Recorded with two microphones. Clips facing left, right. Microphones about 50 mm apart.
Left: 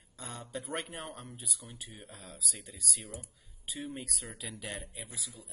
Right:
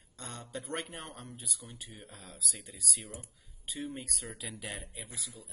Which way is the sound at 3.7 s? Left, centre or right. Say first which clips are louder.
Right 1 dB; centre.